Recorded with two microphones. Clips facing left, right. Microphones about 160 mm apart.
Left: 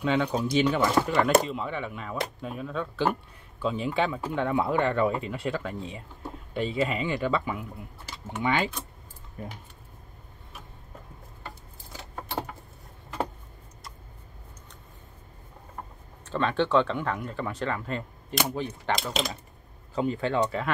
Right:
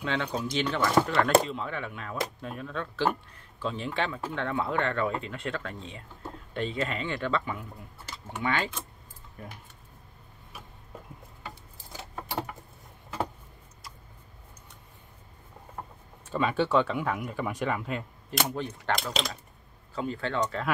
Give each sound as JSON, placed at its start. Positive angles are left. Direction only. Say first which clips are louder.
{"t": 0.0, "sound": "speech", "louder": "left 5 dB", "side_deg": 15}
{"t": 16.3, "sound": "speech", "louder": "left 1 dB", "side_deg": -10}
{"t": 18.5, "sound": "speech", "louder": "left 1 dB", "side_deg": 5}
{"t": 20.0, "sound": "speech", "louder": "left 4 dB", "side_deg": 15}